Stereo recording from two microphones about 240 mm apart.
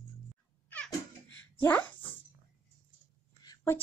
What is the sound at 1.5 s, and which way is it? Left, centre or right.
Speech, centre.